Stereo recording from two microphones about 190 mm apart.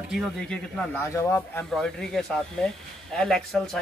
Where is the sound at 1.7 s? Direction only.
Centre (ahead or behind).